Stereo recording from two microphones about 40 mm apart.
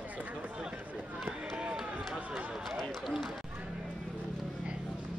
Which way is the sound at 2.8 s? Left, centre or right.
Centre.